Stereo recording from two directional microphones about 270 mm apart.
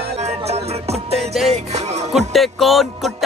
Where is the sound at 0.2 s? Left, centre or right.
Right.